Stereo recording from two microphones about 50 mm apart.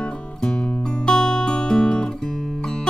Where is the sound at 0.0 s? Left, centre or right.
Centre.